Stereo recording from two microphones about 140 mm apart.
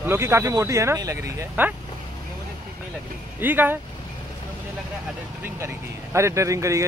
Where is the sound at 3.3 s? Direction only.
15° right (ahead or behind).